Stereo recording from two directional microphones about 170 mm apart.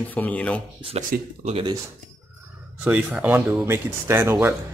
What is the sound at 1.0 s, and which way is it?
Speech, 50° right (ahead or behind).